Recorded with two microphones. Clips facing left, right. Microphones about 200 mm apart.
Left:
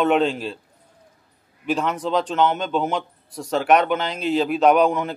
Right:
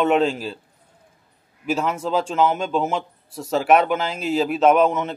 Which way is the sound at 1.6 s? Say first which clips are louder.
Even; 5° right (ahead or behind).